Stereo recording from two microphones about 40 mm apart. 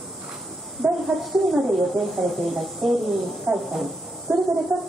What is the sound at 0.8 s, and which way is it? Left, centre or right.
Speech, centre.